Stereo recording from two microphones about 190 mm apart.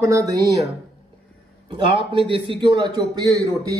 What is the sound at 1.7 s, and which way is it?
A man's voice, 25° right (ahead or behind).